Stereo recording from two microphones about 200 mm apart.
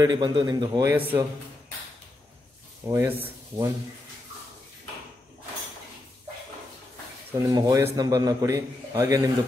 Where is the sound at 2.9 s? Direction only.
15° right (ahead or behind).